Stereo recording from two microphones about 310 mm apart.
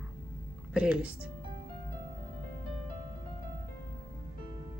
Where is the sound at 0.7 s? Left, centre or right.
Centre.